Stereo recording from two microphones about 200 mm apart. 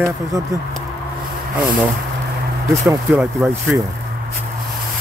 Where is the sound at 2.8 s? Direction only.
10° right (ahead or behind).